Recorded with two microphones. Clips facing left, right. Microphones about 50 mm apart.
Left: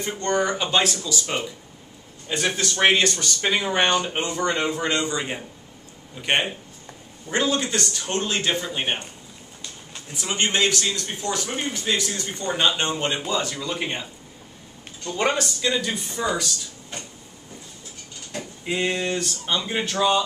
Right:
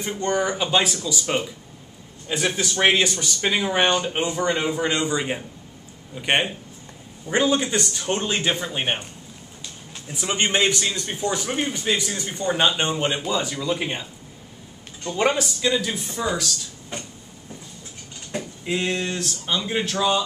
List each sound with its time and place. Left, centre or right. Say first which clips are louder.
0.2 s a man's voice: even; centre
10.1 s a man's voice: right 1 dB; centre
15.0 s speech: right 2 dB; centre
18.3 s a sound: right 3 dB; centre
18.7 s speech: left 1 dB; centre